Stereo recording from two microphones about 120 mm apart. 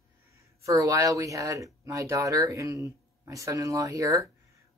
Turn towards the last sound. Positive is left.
turn(degrees=-30)  # may be behind; listen again after turning